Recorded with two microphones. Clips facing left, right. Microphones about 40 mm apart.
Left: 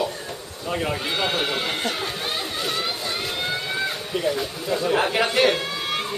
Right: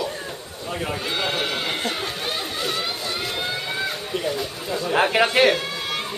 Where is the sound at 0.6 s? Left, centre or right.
Centre.